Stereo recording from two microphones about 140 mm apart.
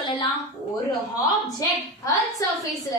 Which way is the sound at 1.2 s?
25° left (ahead or behind).